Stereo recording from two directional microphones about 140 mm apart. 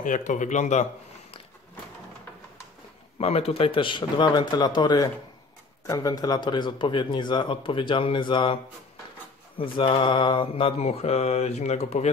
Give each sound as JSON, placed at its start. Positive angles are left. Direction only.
{"t": 0.0, "sound": "speech", "side_deg": 65}
{"t": 3.2, "sound": "a man's voice", "side_deg": 45}
{"t": 9.6, "sound": "mantra", "side_deg": 35}